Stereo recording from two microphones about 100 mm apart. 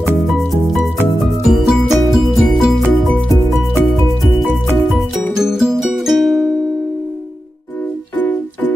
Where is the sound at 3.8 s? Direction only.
Centre (ahead or behind).